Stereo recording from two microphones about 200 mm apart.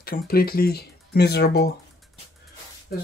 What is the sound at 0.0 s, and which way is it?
Speech, 50° left (ahead or behind).